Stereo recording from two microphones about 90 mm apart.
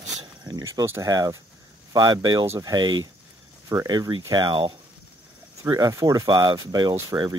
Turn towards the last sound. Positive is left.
turn(degrees=-55)  # may be behind; listen again after turning